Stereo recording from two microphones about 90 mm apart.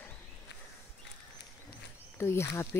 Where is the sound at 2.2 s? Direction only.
30° left (ahead or behind).